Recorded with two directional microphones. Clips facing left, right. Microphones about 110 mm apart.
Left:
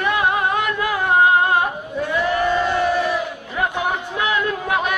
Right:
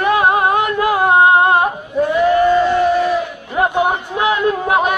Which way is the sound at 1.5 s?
35° right (ahead or behind).